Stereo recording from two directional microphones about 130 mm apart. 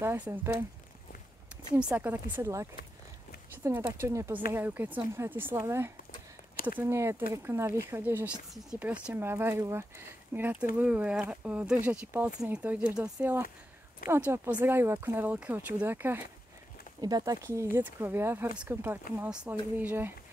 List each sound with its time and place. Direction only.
0.0 s speech: 20° right (ahead or behind)
1.8 s speech: 10° right (ahead or behind)
17.0 s speech: 30° right (ahead or behind); by 20.1 s 15° right (ahead or behind)